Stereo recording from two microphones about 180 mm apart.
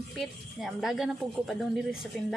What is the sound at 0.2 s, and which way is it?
A woman's voice, centre (ahead or behind).